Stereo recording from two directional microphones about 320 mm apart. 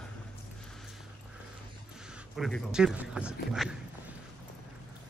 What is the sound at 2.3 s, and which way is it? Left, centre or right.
Speech, centre.